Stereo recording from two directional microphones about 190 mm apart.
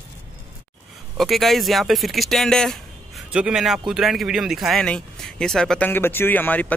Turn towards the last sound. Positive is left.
turn(degrees=10)  # may be behind; listen again after turning